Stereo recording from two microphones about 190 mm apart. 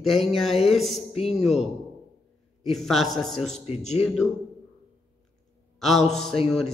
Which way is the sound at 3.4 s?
35° left (ahead or behind).